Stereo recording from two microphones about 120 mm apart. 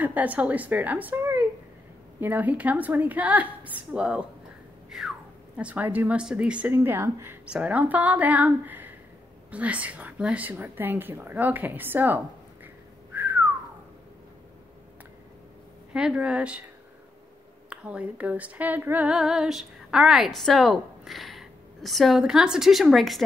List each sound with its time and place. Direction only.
0.0 s a woman's voice: 15° right (ahead or behind)
4.8 s a sound: 5° right (ahead or behind)
5.6 s a woman's voice: 10° right (ahead or behind)
7.4 s a woman's voice: 10° right (ahead or behind)
13.1 s whistling: 15° right (ahead or behind)
15.9 s a woman's voice: 5° right (ahead or behind)
17.6 s a sound: 10° right (ahead or behind)